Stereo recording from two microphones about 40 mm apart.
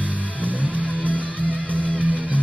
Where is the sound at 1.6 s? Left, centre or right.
Left.